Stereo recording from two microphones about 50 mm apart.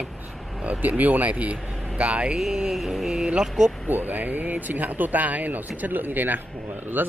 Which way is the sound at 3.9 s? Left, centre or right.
Right.